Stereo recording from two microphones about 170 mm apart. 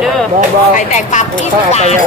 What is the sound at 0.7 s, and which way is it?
Speech, 45° left (ahead or behind).